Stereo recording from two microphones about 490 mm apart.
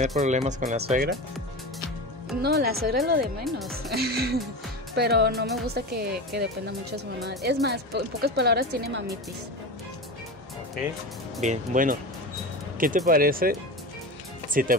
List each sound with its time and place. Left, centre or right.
0.2 s speech: centre
2.4 s a woman's voice: centre
3.4 s speech: centre
3.9 s a woman's voice: centre
11.4 s speech: centre